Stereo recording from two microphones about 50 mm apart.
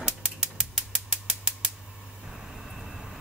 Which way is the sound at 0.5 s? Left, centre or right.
Centre.